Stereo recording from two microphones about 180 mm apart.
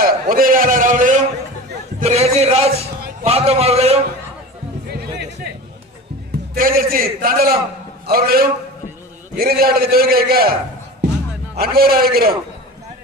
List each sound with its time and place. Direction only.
0.0 s a man's voice: 50° right (ahead or behind)
2.0 s a sound: 35° right (ahead or behind)
4.8 s music: 65° right (ahead or behind)
6.5 s a sound: 55° right (ahead or behind)
8.1 s a man's voice: 55° right (ahead or behind)
11.5 s a man's voice: 60° right (ahead or behind)